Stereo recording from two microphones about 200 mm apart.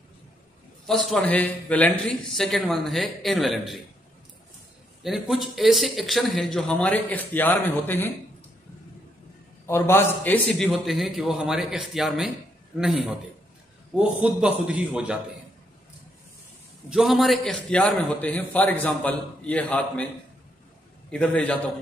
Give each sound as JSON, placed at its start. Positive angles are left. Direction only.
{"t": 0.8, "sound": "speech", "side_deg": 0}
{"t": 5.0, "sound": "speech", "side_deg": 0}
{"t": 9.7, "sound": "speech", "side_deg": 10}
{"t": 16.9, "sound": "a man's voice", "side_deg": 0}
{"t": 21.1, "sound": "speech", "side_deg": 5}